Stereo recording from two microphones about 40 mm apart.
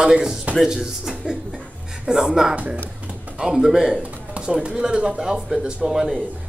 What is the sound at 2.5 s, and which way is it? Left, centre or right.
Speech, right.